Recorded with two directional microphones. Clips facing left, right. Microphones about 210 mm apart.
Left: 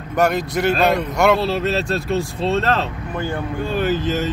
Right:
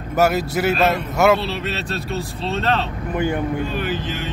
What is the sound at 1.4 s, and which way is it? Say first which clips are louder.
Speech: left 6 dB; 45° left (ahead or behind).